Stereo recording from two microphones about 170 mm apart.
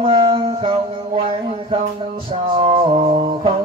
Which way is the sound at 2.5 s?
35° right (ahead or behind).